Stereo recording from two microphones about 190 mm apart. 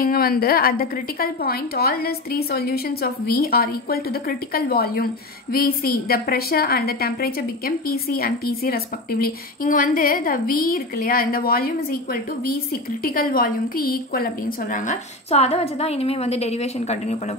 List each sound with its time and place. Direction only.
0.0 s a woman's voice: 50° left (ahead or behind); by 17.2 s 35° left (ahead or behind)